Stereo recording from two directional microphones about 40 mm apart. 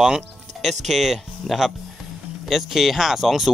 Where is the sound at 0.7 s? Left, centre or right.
Centre.